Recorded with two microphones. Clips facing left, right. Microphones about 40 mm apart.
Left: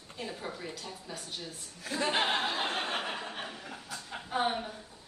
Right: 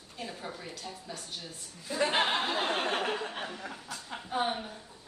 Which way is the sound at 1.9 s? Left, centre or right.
Left.